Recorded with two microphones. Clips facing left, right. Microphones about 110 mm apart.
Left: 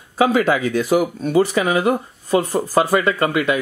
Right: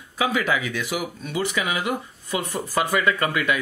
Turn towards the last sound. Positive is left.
turn(degrees=25)  # may be behind; listen again after turning